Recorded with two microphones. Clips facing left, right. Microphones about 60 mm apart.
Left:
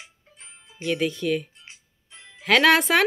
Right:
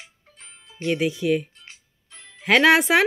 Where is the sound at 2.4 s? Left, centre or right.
Centre.